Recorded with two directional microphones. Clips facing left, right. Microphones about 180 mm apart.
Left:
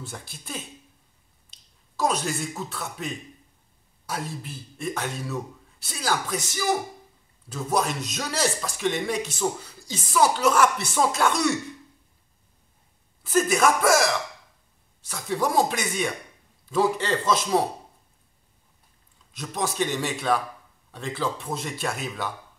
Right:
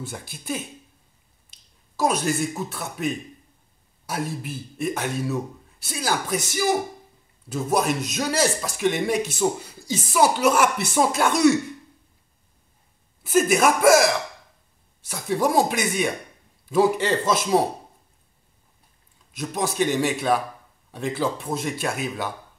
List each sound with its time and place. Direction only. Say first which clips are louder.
0.0 s speech: right 4 dB; 5° right (ahead or behind)
2.0 s speech: right 3 dB; 5° right (ahead or behind)
4.4 s speech: right 7 dB; 10° right (ahead or behind)
13.2 s speech: right 2 dB; 10° right (ahead or behind)
19.3 s speech: right 3 dB; 10° right (ahead or behind)